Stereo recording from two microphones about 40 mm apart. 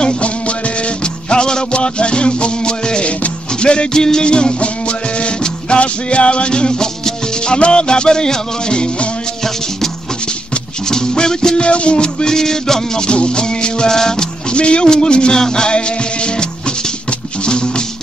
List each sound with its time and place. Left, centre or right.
0.0 s music: left
10.9 s music: centre
13.0 s music: left
14.5 s music: left